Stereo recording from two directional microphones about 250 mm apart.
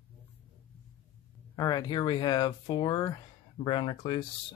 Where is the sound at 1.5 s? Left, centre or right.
Centre.